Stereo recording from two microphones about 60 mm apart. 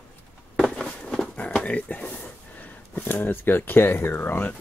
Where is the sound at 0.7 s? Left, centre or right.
Centre.